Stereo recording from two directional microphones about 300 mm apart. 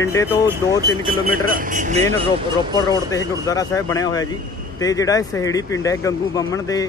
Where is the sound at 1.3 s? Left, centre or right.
Right.